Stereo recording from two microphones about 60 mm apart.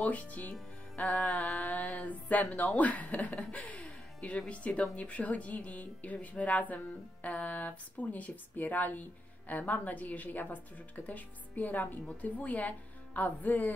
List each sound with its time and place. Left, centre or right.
0.0 s speech: left
1.3 s a sound: centre
1.6 s speech: centre